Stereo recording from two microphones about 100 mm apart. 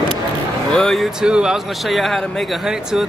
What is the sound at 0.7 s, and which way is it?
Speech, 5° left (ahead or behind).